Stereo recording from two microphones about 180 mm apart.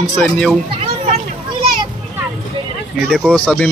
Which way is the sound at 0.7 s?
35° right (ahead or behind).